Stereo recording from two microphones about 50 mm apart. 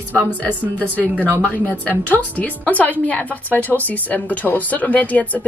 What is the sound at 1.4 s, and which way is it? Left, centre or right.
A woman's voice, left.